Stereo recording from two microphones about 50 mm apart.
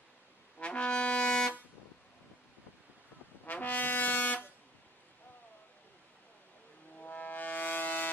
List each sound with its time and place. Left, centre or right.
0.6 s brass instrument: left
3.4 s brass instrument: left
7.0 s music: left